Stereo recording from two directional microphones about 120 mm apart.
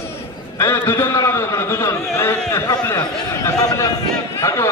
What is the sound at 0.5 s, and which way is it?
A man's voice, 20° left (ahead or behind).